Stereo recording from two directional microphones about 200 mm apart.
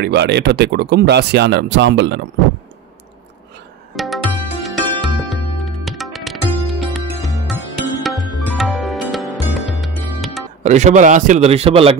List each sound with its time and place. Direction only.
0.0 s speech: 55° right (ahead or behind)
3.9 s tabla: centre (ahead or behind)
4.6 s music: centre (ahead or behind)
10.6 s a man's voice: 35° right (ahead or behind)